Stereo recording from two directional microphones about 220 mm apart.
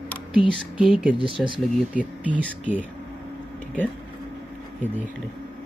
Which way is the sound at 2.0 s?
5° right (ahead or behind).